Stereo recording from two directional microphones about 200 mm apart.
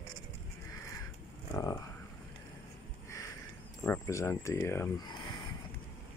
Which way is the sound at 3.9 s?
15° left (ahead or behind).